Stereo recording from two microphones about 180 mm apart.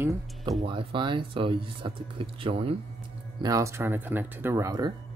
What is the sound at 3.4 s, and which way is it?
Speech, 15° right (ahead or behind).